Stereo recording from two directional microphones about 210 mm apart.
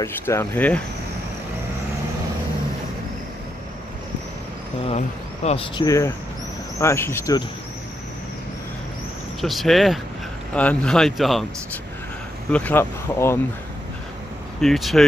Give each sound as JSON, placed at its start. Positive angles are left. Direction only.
{"t": 0.0, "sound": "speech", "side_deg": 15}
{"t": 4.8, "sound": "speech", "side_deg": 30}
{"t": 5.9, "sound": "speech", "side_deg": 15}
{"t": 9.4, "sound": "speech", "side_deg": 0}
{"t": 12.5, "sound": "speech", "side_deg": 10}
{"t": 14.6, "sound": "speech", "side_deg": 0}